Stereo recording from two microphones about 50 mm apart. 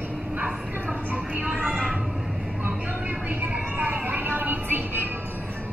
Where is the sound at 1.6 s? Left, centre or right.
Centre.